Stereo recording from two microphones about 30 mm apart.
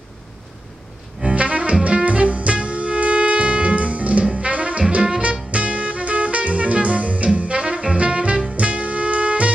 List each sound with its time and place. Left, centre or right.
1.3 s music: right